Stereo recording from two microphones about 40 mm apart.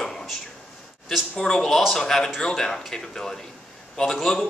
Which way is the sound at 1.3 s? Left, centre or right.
Centre.